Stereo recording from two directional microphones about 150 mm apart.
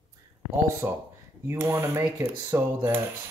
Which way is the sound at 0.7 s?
15° right (ahead or behind).